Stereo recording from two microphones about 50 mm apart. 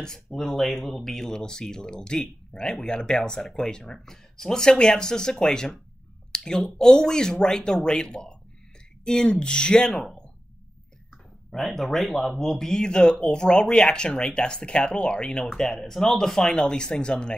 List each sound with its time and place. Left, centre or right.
0.0 s speech: centre
11.5 s speech: centre